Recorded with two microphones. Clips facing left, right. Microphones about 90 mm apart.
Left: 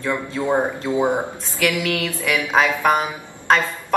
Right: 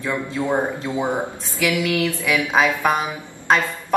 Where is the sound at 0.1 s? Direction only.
20° left (ahead or behind).